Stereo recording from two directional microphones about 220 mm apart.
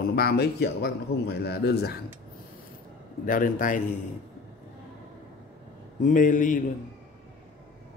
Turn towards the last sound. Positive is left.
turn(degrees=35)  # may be behind; listen again after turning